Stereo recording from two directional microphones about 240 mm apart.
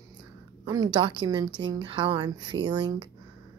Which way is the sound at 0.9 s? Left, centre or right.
Centre.